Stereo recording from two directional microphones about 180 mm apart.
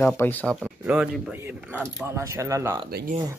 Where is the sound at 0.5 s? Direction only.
5° right (ahead or behind).